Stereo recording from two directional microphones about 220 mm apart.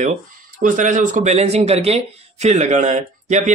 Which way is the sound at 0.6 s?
35° right (ahead or behind).